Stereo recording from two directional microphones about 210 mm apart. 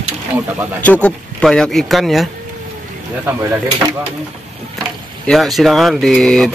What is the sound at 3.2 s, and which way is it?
Speech, 10° right (ahead or behind).